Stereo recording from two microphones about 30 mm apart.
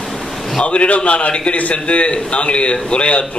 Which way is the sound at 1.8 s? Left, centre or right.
Left.